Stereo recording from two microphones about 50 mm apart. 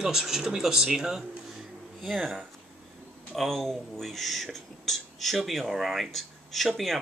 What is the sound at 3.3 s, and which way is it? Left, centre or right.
Speech, centre.